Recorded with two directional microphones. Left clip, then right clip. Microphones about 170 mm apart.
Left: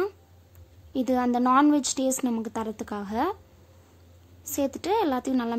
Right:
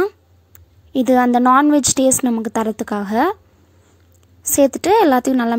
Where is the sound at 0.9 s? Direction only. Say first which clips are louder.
Right 11 dB; 35° right (ahead or behind).